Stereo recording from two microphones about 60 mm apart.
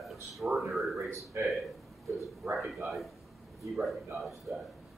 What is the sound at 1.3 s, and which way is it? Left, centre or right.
Speech, right.